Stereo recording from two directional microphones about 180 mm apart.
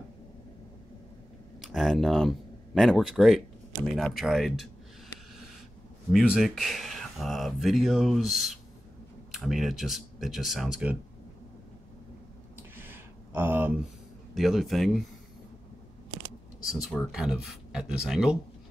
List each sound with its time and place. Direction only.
1.6 s speech: centre (ahead or behind)
6.1 s speech: centre (ahead or behind)
12.7 s a sound: 10° right (ahead or behind)
14.3 s speech: centre (ahead or behind)
16.6 s speech: centre (ahead or behind)